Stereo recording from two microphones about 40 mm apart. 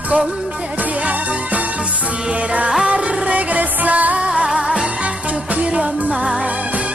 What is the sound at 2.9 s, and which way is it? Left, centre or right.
Music, right.